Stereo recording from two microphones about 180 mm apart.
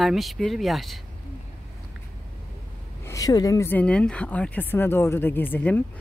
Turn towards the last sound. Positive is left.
turn(degrees=10)  # may be behind; listen again after turning